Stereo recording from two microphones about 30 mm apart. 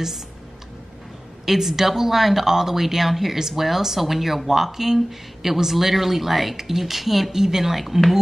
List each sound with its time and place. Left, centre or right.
1.4 s a woman's voice: centre